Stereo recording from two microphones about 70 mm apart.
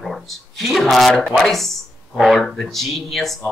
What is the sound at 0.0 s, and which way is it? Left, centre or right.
Speech, centre.